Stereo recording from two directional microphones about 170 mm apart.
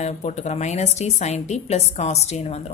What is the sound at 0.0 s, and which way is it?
A woman's voice, 40° left (ahead or behind).